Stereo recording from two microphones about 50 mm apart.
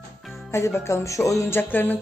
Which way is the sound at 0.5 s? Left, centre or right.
Left.